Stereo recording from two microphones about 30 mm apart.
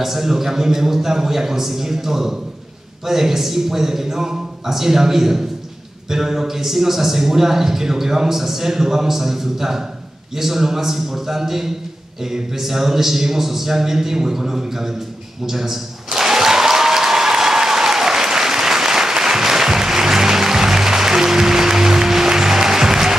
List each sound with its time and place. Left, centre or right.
0.0 s a man's voice: centre
15.4 s applause: centre